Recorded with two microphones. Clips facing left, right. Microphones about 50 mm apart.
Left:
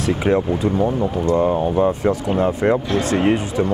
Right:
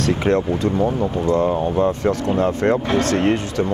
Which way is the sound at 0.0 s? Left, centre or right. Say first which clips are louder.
Even; centre.